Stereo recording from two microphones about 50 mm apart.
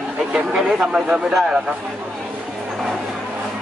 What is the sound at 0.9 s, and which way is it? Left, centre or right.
Speech, centre.